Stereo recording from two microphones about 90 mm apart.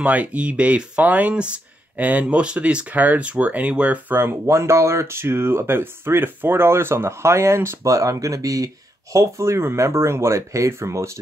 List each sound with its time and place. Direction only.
0.0 s speech: 15° right (ahead or behind)
4.2 s speech: 30° right (ahead or behind)